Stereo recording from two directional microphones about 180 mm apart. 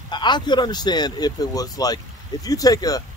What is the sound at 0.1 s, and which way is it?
Speech, 25° left (ahead or behind).